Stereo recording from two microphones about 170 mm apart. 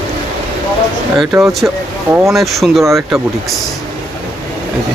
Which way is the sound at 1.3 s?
10° right (ahead or behind).